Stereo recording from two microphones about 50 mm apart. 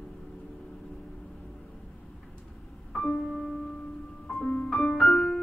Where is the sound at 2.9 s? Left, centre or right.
Centre.